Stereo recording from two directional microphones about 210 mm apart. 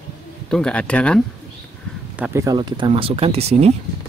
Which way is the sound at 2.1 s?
10° right (ahead or behind).